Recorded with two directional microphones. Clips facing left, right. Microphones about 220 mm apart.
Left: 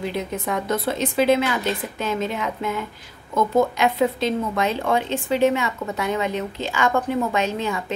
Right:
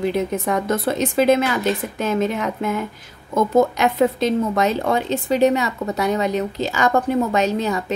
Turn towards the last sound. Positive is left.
turn(degrees=-40)  # may be behind; listen again after turning